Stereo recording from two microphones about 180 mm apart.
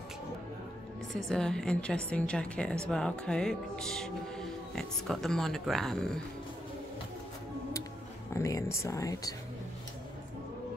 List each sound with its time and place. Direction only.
1.1 s music: 5° left (ahead or behind)
8.3 s speech: 15° left (ahead or behind)